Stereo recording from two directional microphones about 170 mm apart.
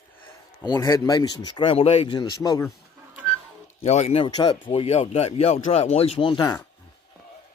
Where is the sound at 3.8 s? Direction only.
40° left (ahead or behind).